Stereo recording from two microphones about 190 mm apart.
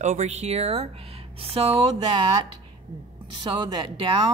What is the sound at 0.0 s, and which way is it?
Speech, 40° right (ahead or behind).